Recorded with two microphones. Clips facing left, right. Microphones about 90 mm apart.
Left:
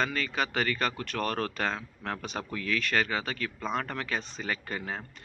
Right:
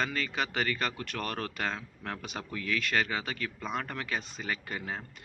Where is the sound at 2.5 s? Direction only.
20° right (ahead or behind).